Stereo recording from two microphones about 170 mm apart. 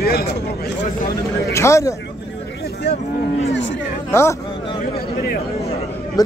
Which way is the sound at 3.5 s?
90° left.